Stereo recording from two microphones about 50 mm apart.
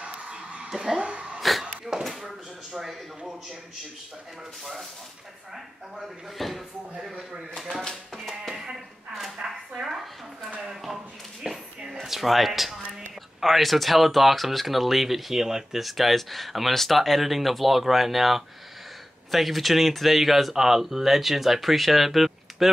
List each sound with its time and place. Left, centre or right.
0.0 s a sound: right
0.7 s speech: centre
1.9 s speech: centre
5.9 s speech: centre
6.9 s speech: centre
7.9 s music: centre
9.4 s speech: centre
11.4 s a sound: centre
12.0 s speech: centre